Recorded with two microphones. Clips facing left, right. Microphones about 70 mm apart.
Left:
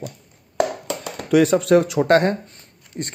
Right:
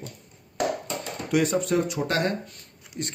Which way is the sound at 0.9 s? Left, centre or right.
Left.